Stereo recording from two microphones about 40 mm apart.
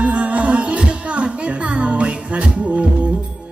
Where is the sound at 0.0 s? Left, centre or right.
Right.